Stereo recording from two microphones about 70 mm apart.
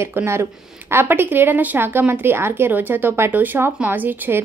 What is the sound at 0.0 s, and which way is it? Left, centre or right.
A woman's voice, right.